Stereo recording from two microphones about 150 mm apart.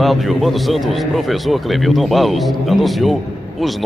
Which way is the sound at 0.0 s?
Centre (ahead or behind).